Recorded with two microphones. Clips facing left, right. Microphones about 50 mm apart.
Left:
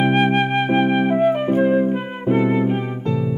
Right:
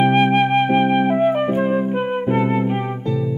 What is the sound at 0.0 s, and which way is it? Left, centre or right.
Flute, centre.